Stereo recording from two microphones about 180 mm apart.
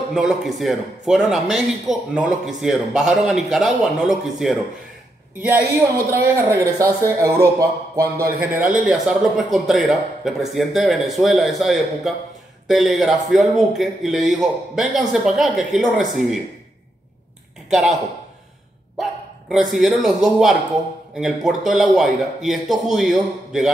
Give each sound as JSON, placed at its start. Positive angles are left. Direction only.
{"t": 0.1, "sound": "a man's voice", "side_deg": 0}
{"t": 6.3, "sound": "speech", "side_deg": -15}
{"t": 8.6, "sound": "a man's voice", "side_deg": -5}
{"t": 17.6, "sound": "speech", "side_deg": 0}
{"t": 19.5, "sound": "a man's voice", "side_deg": 0}